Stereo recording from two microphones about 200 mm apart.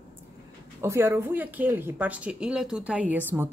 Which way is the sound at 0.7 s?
15° right (ahead or behind).